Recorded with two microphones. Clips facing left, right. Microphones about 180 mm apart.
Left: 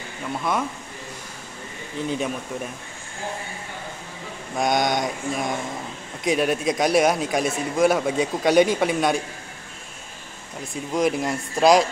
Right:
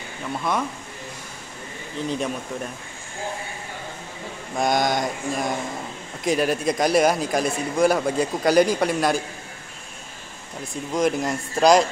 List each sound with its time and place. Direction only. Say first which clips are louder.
0.3 s speech: even; centre (ahead or behind)
2.0 s speech: even; centre (ahead or behind)
4.6 s speech: even; centre (ahead or behind)
10.7 s speech: even; centre (ahead or behind)